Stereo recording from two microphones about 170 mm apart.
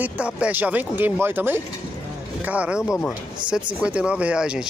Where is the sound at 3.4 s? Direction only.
5° right (ahead or behind).